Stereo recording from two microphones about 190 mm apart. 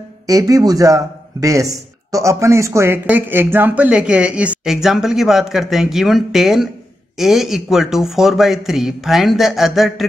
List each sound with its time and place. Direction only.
0.3 s a man's voice: 20° right (ahead or behind); by 10.0 s centre (ahead or behind)